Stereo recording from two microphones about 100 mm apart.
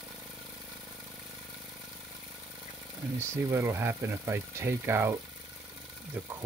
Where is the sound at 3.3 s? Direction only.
25° right (ahead or behind).